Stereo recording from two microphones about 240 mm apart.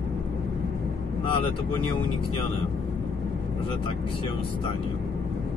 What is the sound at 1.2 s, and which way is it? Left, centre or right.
Speech, left.